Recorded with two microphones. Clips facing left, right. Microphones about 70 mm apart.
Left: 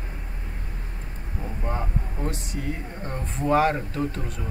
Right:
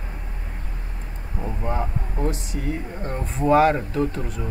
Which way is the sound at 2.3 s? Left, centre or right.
Centre.